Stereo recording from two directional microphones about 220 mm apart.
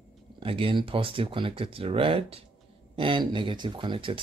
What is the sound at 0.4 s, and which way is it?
Speech, 25° right (ahead or behind).